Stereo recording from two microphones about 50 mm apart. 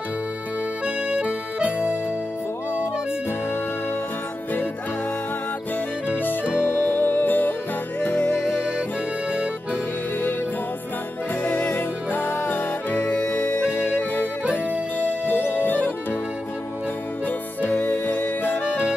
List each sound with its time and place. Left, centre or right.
0.8 s music: right
6.0 s music: left
11.4 s music: left
12.1 s music: left
13.0 s music: centre
13.3 s music: left
13.7 s music: left
17.7 s music: left